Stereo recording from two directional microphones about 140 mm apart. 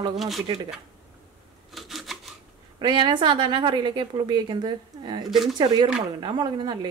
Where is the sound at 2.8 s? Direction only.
35° right (ahead or behind).